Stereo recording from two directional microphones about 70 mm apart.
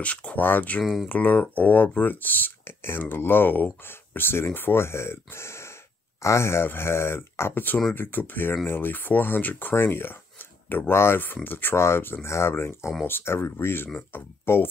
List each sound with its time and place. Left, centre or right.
0.0 s speech: centre; by 14.7 s left